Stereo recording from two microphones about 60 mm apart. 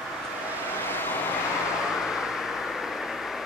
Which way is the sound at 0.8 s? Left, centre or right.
Left.